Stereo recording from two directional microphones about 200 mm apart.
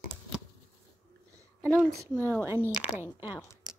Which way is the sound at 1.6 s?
Centre (ahead or behind).